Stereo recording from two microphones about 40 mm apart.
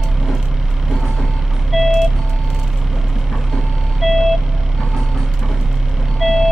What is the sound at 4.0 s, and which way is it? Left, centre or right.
Vehicle, centre.